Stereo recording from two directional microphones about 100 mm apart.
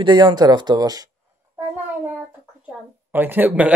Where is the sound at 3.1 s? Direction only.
20° right (ahead or behind).